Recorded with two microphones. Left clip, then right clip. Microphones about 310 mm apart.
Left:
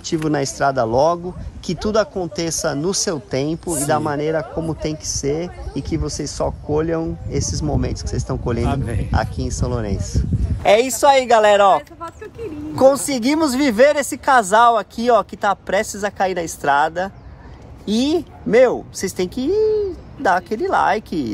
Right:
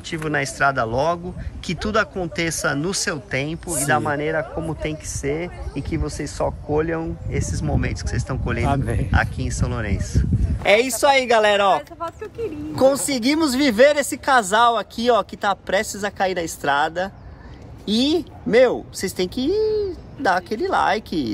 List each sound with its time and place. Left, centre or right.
0.0 s speech: centre
8.6 s speech: centre
9.1 s speech: centre
10.4 s a sound: centre
11.0 s speech: centre
13.0 s speech: centre